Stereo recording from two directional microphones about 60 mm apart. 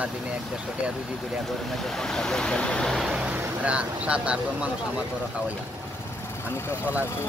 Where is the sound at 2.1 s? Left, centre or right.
Centre.